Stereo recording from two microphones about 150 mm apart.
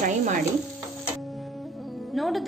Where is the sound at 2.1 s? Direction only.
Centre (ahead or behind).